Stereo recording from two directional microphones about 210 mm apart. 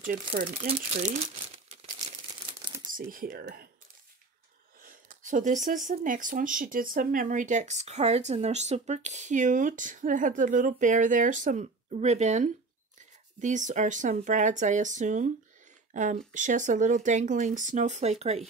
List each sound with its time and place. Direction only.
0.0 s speech: 40° right (ahead or behind)
0.7 s crumpling: 30° right (ahead or behind)
2.9 s speech: 40° right (ahead or behind)
4.8 s speech: 40° right (ahead or behind)